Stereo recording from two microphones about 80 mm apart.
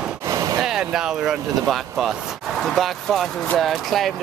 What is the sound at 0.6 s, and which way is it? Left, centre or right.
Speech, centre.